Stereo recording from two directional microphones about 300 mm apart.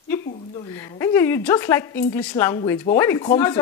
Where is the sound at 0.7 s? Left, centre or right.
Centre.